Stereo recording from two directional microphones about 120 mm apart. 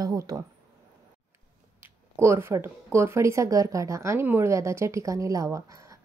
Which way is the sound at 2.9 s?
25° right (ahead or behind).